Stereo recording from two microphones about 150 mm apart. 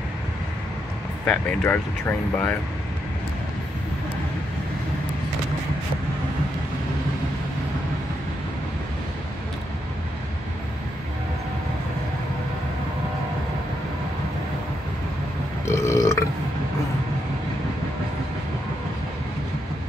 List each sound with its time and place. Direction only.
1.2 s speech: 10° left (ahead or behind)
15.6 s burping: 20° left (ahead or behind)